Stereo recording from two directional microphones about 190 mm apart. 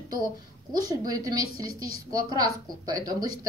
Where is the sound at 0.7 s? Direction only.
20° right (ahead or behind).